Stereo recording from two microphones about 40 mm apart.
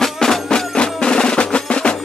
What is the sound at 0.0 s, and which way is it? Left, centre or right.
Music, centre.